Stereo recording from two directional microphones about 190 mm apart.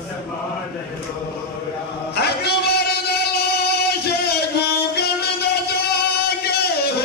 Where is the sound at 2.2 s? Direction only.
55° left (ahead or behind).